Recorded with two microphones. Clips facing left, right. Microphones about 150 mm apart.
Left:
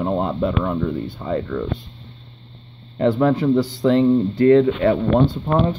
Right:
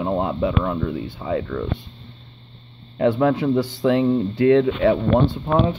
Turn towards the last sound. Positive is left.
turn(degrees=-5)  # may be behind; listen again after turning